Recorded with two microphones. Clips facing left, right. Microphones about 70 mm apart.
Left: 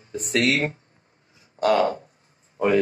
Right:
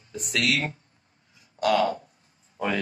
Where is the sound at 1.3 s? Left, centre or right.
Left.